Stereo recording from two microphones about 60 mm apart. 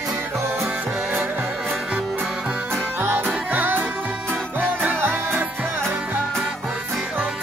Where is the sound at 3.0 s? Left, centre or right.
Right.